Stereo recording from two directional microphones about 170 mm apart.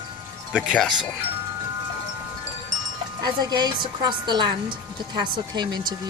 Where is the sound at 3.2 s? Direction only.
25° right (ahead or behind).